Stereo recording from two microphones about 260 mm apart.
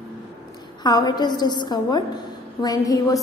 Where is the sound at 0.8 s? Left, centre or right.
Centre.